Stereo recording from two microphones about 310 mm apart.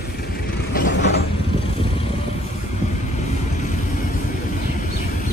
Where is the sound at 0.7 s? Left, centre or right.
Left.